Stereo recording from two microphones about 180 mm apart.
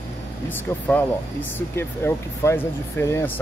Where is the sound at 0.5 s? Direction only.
10° left (ahead or behind).